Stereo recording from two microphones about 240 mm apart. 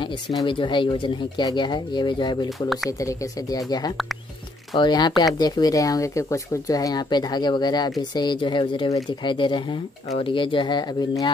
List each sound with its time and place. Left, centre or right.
0.4 s speech: centre
3.9 s speech: centre
4.7 s speech: centre